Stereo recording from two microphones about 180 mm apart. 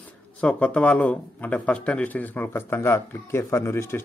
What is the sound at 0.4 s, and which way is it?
Speech, 5° left (ahead or behind).